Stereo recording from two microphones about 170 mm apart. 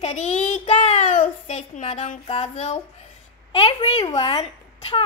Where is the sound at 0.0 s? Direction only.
40° left (ahead or behind).